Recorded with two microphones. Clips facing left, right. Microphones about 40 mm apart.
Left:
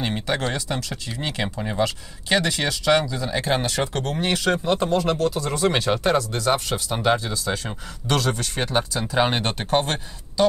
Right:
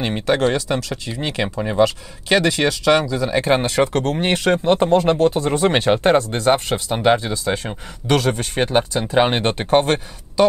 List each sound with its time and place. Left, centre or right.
0.0 s speech: right
1.4 s speech: right
3.9 s speech: right